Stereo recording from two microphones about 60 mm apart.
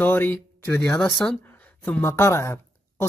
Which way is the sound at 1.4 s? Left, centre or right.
Left.